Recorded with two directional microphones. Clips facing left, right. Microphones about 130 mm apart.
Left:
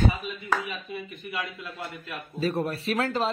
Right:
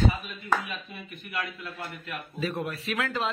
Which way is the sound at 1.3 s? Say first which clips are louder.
Even; 30° left (ahead or behind).